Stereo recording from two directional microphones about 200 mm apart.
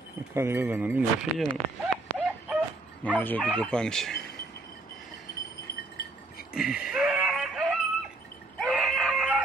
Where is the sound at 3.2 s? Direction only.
10° left (ahead or behind).